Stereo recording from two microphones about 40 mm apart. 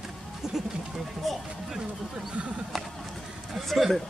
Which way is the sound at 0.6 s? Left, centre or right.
Centre.